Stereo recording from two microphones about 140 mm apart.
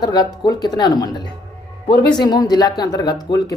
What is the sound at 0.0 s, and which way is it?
Speech, 30° left (ahead or behind).